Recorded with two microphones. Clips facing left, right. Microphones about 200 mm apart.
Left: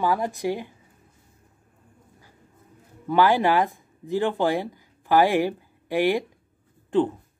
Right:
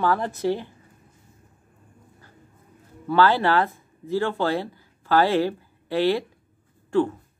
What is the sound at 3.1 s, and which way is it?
Speech, 15° left (ahead or behind).